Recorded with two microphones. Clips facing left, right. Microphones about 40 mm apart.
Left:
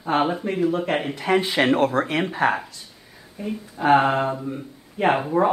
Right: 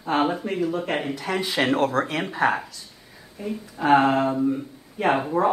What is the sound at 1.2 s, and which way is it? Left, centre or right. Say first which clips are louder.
Speech: left 6 dB; left.